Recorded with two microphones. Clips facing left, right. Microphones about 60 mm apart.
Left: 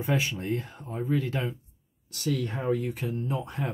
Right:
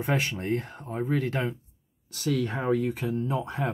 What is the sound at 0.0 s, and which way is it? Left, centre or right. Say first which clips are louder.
Speech: right 1 dB; right.